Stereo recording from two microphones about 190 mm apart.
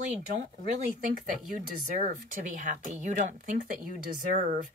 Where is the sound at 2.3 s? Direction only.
40° right (ahead or behind).